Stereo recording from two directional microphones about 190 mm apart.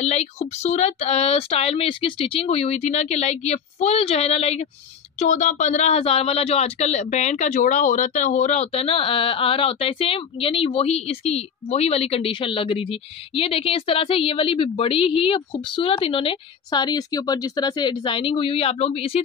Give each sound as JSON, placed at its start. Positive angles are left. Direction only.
{"t": 0.0, "sound": "speech", "side_deg": 35}